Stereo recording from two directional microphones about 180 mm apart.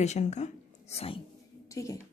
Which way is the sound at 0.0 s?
40° left (ahead or behind).